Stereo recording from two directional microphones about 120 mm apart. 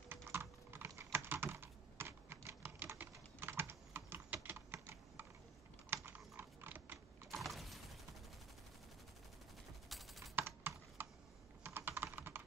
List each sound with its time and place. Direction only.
0.1 s typing: 20° right (ahead or behind)
7.3 s a sound: centre (ahead or behind)
9.8 s typing: centre (ahead or behind)
10.3 s computer keyboard: 15° right (ahead or behind)
11.0 s a sound: 20° right (ahead or behind)
11.6 s computer keyboard: 20° right (ahead or behind)